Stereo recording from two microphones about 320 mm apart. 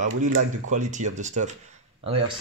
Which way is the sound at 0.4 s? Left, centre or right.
Right.